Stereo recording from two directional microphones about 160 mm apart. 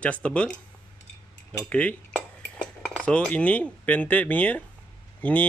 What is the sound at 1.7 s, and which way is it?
Dishes, 10° left (ahead or behind).